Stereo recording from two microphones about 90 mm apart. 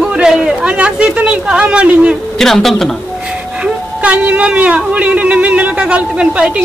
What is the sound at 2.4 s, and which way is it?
Speech, 5° left (ahead or behind).